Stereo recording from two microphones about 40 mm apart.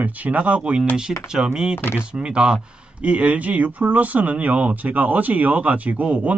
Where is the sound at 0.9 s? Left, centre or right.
Centre.